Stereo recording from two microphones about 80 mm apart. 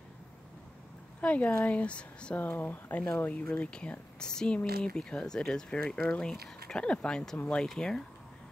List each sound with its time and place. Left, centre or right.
1.2 s speech: centre